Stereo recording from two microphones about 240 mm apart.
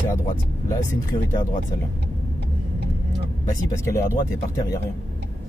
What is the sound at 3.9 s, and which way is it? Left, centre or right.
Speech, centre.